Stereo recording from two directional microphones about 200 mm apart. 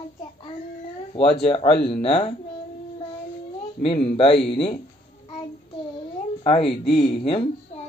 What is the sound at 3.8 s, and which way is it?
Speech, 25° left (ahead or behind).